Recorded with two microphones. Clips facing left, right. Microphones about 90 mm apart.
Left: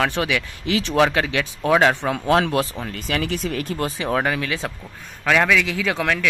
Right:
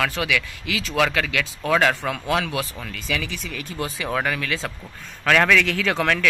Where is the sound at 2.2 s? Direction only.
40° left (ahead or behind).